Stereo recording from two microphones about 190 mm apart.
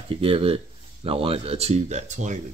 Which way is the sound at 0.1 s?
30° right (ahead or behind).